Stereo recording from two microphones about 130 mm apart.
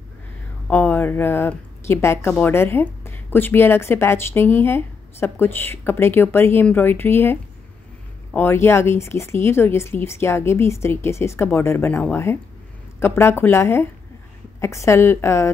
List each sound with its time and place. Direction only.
0.7 s a woman's voice: 15° left (ahead or behind)